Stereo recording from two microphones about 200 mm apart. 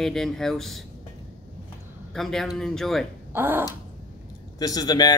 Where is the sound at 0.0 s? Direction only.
Centre (ahead or behind).